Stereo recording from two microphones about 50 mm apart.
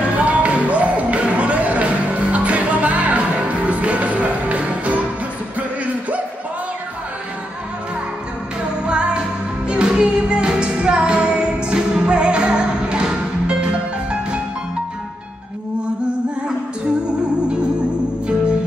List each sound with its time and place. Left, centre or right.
0.1 s music: right
8.8 s music: centre